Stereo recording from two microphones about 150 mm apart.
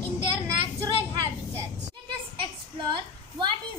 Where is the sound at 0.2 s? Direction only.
35° right (ahead or behind).